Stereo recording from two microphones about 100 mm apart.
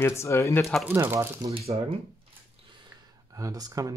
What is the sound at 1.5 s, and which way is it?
Speech, 85° right.